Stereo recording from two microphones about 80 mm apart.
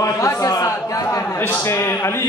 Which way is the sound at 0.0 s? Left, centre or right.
Left.